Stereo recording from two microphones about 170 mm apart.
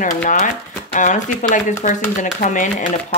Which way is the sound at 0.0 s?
50° left (ahead or behind).